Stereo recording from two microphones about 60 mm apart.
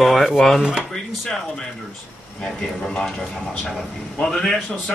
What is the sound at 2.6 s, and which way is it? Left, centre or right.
Speech, centre.